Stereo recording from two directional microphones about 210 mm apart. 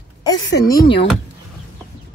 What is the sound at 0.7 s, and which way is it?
Speech, 15° left (ahead or behind).